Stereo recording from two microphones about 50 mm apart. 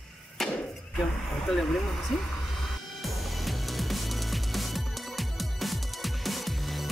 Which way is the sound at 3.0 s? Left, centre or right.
Centre.